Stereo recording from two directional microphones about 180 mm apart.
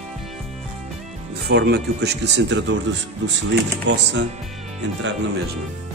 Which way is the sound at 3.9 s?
75° right (ahead or behind).